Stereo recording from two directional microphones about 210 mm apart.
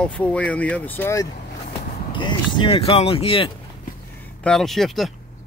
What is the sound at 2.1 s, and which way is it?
Speech, 20° left (ahead or behind).